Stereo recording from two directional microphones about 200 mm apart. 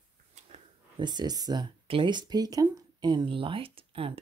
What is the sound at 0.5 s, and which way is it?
Speech, 25° right (ahead or behind).